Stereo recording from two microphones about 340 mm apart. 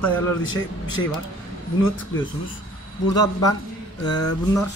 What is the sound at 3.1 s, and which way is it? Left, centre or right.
Speech, centre.